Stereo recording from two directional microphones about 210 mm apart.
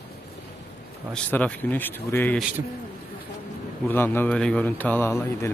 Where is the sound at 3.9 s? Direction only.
10° left (ahead or behind).